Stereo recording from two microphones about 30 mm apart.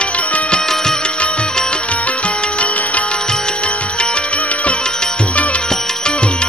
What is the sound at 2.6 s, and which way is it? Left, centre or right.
Music, left.